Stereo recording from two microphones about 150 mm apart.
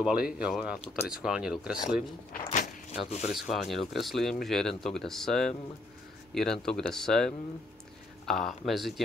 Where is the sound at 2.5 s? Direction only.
45° left (ahead or behind).